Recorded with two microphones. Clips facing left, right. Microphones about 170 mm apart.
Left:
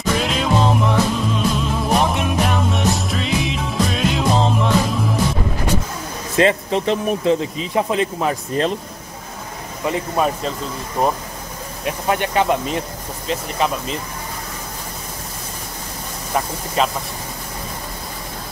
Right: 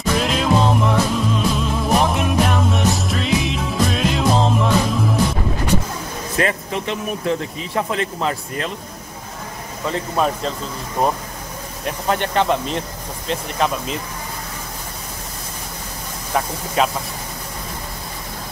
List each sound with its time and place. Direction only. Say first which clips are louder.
0.2 s music: right 2 dB; centre (ahead or behind)
6.3 s speech: left 5 dB; 30° left (ahead or behind)
9.8 s speech: left 1 dB; 10° left (ahead or behind)
16.3 s speech: right 1 dB; centre (ahead or behind)